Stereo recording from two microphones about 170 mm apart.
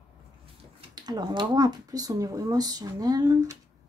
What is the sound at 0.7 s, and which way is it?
A woman's voice, 25° right (ahead or behind).